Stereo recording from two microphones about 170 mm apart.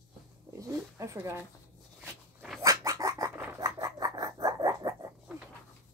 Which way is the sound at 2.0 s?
5° right (ahead or behind).